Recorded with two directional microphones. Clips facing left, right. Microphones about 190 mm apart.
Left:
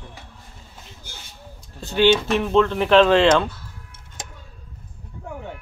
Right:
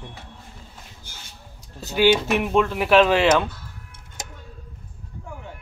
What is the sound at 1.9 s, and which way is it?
Speech, 10° right (ahead or behind).